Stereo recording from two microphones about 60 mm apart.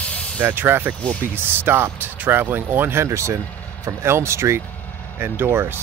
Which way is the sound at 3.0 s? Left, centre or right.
Right.